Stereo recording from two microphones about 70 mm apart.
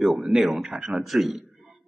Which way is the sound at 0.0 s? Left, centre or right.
Centre.